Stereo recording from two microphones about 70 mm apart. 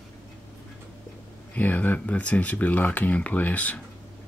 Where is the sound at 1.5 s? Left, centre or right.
Left.